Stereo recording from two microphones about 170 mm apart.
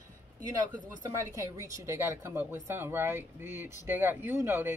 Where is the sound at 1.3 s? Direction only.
20° right (ahead or behind).